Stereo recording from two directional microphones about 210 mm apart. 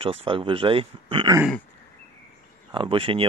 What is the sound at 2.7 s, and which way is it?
Speech, 25° right (ahead or behind).